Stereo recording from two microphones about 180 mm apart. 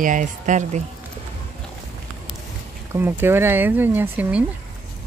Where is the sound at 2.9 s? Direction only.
10° right (ahead or behind).